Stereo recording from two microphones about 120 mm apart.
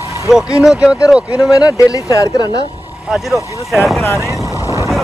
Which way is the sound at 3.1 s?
5° right (ahead or behind).